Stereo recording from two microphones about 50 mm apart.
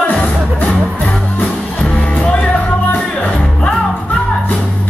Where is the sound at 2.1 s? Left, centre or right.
Left.